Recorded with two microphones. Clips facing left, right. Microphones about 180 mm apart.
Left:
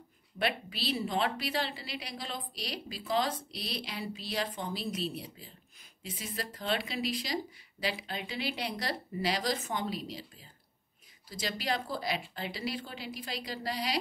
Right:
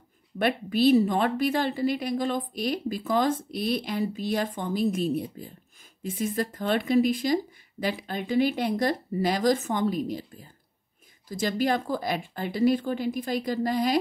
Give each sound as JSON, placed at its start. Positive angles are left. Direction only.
{"t": 0.4, "sound": "a woman's voice", "side_deg": -50}